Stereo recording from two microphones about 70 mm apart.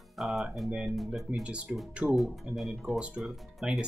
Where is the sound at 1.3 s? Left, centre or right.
Centre.